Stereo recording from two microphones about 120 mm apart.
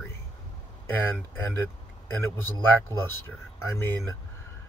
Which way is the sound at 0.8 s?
20° left (ahead or behind).